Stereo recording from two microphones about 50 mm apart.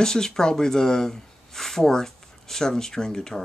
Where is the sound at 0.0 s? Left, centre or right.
Centre.